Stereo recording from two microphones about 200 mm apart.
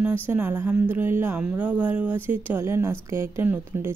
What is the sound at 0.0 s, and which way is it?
Speech, 10° right (ahead or behind).